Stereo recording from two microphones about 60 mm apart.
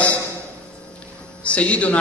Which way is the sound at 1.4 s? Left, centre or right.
Left.